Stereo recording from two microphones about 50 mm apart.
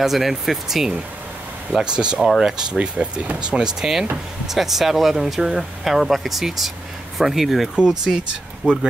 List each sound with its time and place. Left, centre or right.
0.0 s speech: centre
2.1 s speech: centre
2.4 s speech: centre
7.7 s speech: centre